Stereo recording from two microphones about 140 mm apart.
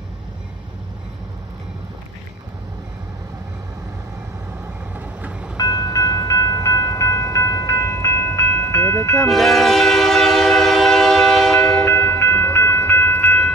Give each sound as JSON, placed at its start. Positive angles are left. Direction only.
{"t": 4.9, "sound": "vehicle", "side_deg": -10}
{"t": 5.6, "sound": "train", "side_deg": 25}
{"t": 9.3, "sound": "train", "side_deg": 0}
{"t": 11.8, "sound": "train", "side_deg": 15}